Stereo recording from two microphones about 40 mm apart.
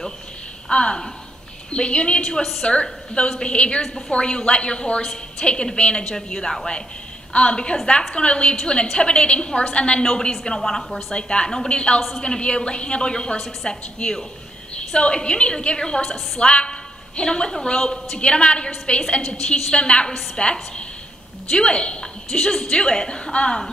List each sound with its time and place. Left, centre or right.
0.7 s a woman's voice: left
7.3 s a woman's voice: left
10.8 s a woman's voice: centre
11.1 s a woman's voice: left
19.2 s a woman's voice: centre
19.7 s a woman's voice: left